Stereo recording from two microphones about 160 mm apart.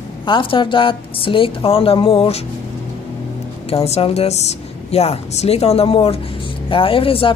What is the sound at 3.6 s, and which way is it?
A woman's voice, 40° left (ahead or behind).